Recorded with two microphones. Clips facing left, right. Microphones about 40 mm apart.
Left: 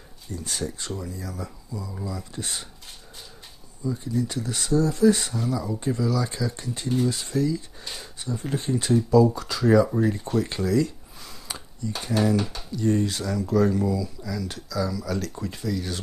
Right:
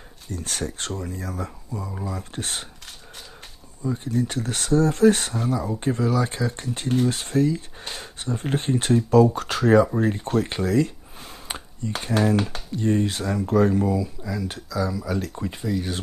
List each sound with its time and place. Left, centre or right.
0.3 s speech: right
3.8 s speech: right
10.5 s a sound: right
12.1 s speech: right